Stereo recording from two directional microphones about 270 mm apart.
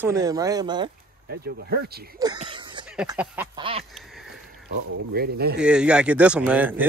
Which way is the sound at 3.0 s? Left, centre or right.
Centre.